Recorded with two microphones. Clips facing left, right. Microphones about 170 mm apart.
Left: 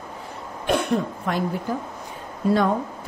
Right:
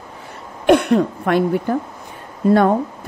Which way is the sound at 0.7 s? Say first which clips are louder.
Right 9 dB; 70° right (ahead or behind).